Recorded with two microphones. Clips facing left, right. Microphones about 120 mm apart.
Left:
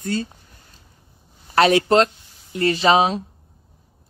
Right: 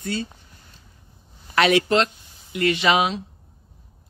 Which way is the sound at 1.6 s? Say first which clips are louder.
Left 3 dB; 40° left (ahead or behind).